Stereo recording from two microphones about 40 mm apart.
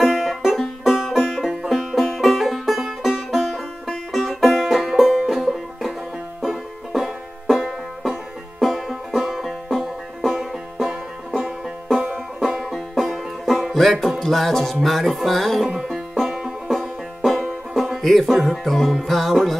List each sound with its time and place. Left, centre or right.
0.0 s music: centre
1.7 s music: centre
2.0 s music: centre
3.8 s music: centre
12.4 s music: centre
16.3 s music: centre
17.7 s music: centre